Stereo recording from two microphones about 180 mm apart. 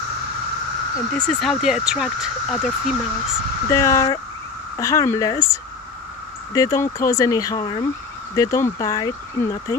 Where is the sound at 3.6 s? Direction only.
15° left (ahead or behind).